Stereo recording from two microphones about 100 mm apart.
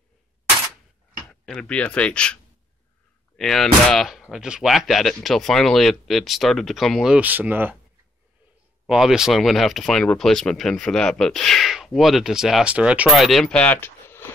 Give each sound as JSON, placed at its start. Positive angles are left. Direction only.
{"t": 1.3, "sound": "speech", "side_deg": 10}
{"t": 3.3, "sound": "speech", "side_deg": 5}
{"t": 7.2, "sound": "speech", "side_deg": -15}
{"t": 8.8, "sound": "speech", "side_deg": -5}
{"t": 13.1, "sound": "speech", "side_deg": 0}
{"t": 13.7, "sound": "a sound", "side_deg": 25}